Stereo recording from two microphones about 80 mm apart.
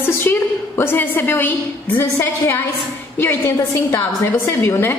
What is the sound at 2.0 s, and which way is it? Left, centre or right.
A woman's voice, left.